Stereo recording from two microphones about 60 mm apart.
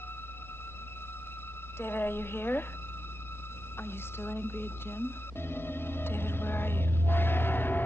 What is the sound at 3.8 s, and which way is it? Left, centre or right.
Speech, left.